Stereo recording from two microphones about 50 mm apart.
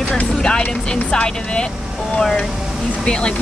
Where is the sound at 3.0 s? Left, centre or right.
Centre.